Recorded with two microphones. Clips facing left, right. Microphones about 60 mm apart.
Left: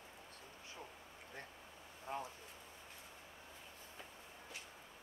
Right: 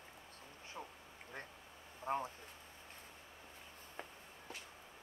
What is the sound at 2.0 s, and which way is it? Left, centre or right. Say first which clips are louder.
Speech: right 6 dB; right.